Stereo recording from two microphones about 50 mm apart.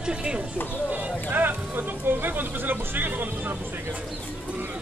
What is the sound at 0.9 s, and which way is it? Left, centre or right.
Speech, right.